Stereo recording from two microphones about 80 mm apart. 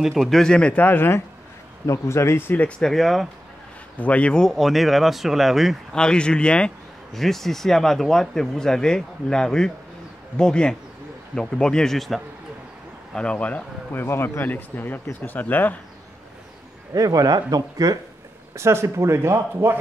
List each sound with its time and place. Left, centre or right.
0.0 s speech: centre
0.8 s speech: left
2.8 s speech: centre
4.0 s speech: centre
5.9 s speech: centre
13.1 s speech: centre
14.0 s speech: left
16.9 s speech: right
18.5 s speech: right